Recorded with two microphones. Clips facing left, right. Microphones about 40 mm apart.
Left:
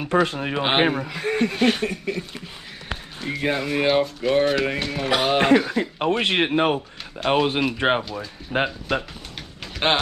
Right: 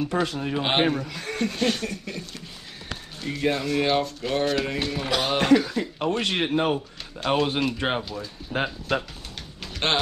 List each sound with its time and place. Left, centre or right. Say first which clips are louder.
0.0 s speech: left 4 dB; left
0.6 s speech: left 3 dB; left
4.7 s a sound: left 3 dB; centre
5.4 s speech: left 2 dB; left
7.2 s speech: left 3 dB; left
8.0 s speech: left 3 dB; centre
8.5 s speech: left 4 dB; left
8.9 s speech: right 1 dB; centre
9.8 s a sound: left 4 dB; centre